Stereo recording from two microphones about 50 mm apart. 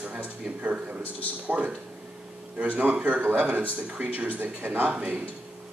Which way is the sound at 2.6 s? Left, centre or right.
Right.